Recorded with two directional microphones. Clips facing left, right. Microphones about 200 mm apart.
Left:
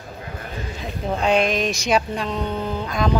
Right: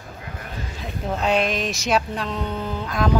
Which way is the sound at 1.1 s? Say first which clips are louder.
Left 2 dB; 5° right (ahead or behind).